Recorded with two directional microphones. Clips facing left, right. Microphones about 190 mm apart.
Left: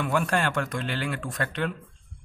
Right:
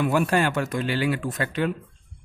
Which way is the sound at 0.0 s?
5° right (ahead or behind).